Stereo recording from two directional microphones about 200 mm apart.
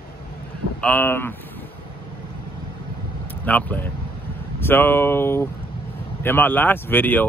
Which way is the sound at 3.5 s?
10° left (ahead or behind).